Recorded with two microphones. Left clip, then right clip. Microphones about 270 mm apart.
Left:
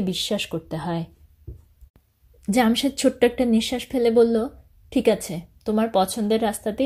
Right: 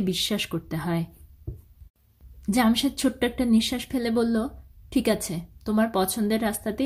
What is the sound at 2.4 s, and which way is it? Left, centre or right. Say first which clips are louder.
A woman's voice: left 3 dB; centre.